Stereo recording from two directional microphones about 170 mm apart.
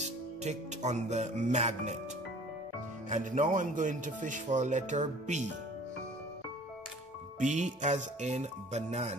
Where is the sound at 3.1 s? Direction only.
50° right (ahead or behind).